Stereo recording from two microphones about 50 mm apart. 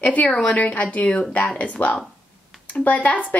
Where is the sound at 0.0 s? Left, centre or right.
Left.